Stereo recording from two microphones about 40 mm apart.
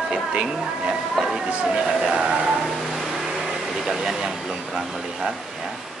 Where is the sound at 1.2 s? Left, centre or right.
Centre.